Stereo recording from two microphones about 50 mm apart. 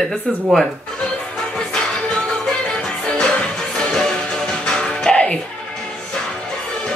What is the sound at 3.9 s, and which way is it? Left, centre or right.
Music, centre.